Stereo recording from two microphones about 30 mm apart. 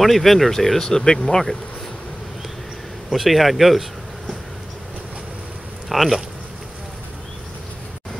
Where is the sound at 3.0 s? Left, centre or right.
Centre.